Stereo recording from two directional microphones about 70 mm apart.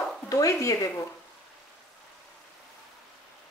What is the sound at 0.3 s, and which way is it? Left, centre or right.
Speech, left.